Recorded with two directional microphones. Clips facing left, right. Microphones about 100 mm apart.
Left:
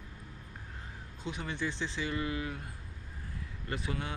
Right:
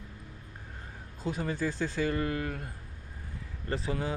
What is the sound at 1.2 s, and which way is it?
A man's voice, 40° right (ahead or behind).